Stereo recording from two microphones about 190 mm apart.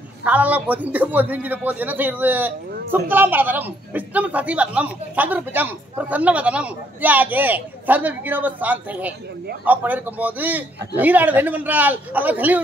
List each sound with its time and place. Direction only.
0.2 s a woman's voice: 10° right (ahead or behind)